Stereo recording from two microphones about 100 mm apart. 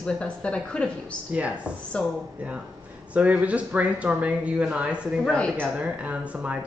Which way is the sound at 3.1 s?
15° right (ahead or behind).